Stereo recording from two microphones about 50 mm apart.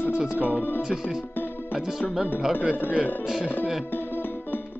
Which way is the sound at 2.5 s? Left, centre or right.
Right.